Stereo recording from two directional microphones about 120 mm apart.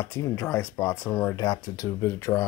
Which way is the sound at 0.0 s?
25° left (ahead or behind).